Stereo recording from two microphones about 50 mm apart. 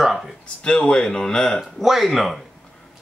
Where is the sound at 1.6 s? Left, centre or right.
Centre.